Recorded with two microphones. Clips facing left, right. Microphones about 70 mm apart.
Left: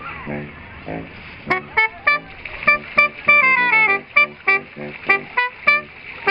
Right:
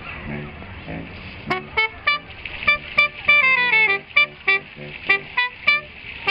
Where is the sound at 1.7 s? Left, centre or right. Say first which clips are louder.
Left 5 dB; left.